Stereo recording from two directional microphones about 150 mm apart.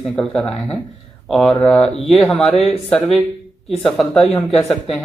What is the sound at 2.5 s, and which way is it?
Speech, 40° left (ahead or behind).